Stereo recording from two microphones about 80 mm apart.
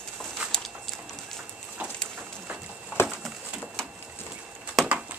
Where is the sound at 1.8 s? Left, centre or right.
Centre.